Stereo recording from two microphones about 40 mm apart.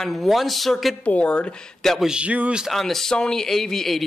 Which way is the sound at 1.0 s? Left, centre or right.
Left.